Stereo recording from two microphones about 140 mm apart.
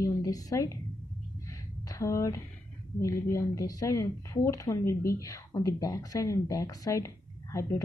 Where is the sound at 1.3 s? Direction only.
25° left (ahead or behind).